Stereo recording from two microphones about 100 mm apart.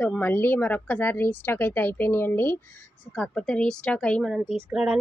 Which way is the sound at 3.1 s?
10° left (ahead or behind).